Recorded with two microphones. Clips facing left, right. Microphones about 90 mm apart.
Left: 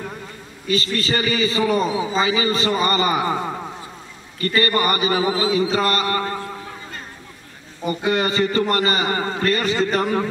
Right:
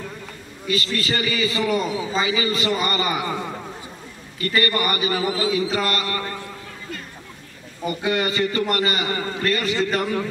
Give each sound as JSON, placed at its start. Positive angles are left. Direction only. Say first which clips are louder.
{"t": 0.7, "sound": "a man's voice", "louder": "left 2 dB", "side_deg": 35}
{"t": 4.6, "sound": "mantra", "louder": "left 3 dB", "side_deg": 35}
{"t": 8.1, "sound": "a man's voice", "louder": "left 3 dB", "side_deg": 35}